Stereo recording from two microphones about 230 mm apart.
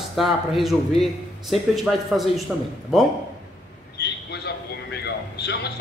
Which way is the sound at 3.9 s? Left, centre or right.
Left.